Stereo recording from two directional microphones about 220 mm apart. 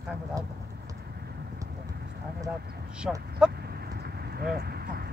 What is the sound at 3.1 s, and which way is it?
Speech, centre (ahead or behind).